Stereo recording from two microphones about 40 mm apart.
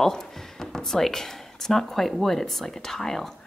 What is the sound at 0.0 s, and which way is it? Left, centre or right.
Speech, centre.